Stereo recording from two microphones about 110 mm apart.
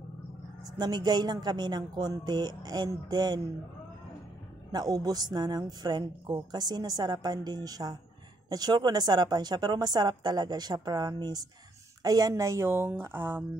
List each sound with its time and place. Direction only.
0.7 s a woman's voice: 40° right (ahead or behind)
4.7 s a woman's voice: 35° right (ahead or behind); by 13.4 s 20° right (ahead or behind)